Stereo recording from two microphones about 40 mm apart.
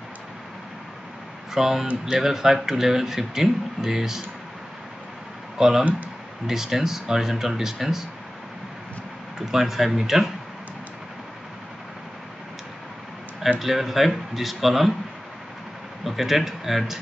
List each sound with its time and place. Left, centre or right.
1.5 s speech: centre
5.6 s speech: centre
9.5 s speech: centre
13.6 s speech: centre
16.1 s speech: centre